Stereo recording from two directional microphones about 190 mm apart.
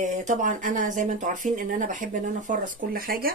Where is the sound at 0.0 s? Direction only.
40° right (ahead or behind).